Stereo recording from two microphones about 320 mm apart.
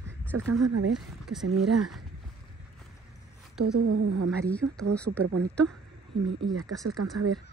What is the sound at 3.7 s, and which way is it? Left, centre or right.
Speech, right.